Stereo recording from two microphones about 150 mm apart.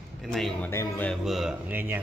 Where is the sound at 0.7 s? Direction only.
15° left (ahead or behind).